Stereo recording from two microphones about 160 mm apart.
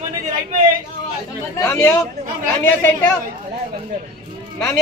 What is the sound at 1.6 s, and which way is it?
Speech, 15° left (ahead or behind).